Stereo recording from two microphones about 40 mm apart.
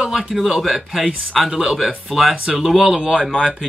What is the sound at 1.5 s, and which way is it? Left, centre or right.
Speech, centre.